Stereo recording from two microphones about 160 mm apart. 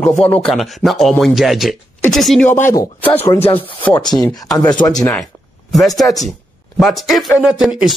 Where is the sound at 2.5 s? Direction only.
20° left (ahead or behind).